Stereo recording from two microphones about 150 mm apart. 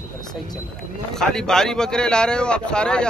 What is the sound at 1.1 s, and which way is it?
A man's voice, 5° left (ahead or behind).